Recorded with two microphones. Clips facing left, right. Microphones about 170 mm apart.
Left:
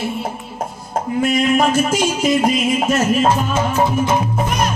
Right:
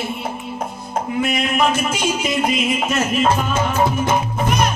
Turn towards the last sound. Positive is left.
turn(degrees=45)  # may be behind; listen again after turning